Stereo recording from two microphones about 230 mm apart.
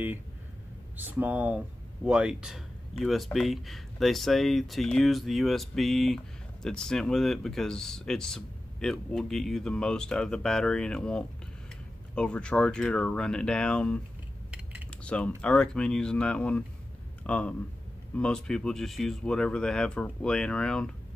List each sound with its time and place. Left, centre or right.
0.9 s speech: centre